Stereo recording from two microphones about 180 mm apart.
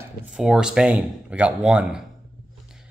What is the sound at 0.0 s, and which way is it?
Speech, 5° right (ahead or behind).